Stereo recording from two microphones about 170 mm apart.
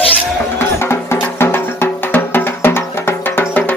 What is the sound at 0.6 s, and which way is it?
Music, 15° left (ahead or behind).